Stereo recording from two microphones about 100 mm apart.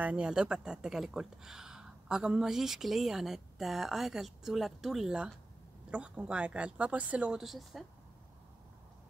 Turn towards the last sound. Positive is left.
turn(degrees=0)  # may be behind; listen again after turning